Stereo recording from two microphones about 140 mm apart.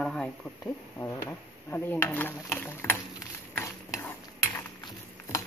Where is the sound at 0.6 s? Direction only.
20° left (ahead or behind).